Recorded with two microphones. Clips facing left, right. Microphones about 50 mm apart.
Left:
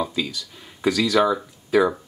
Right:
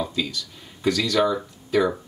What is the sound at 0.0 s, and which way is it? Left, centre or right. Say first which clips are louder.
Speech: left 1 dB; centre.